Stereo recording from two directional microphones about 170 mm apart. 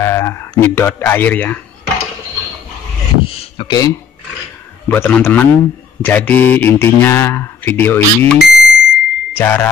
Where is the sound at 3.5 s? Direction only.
25° left (ahead or behind).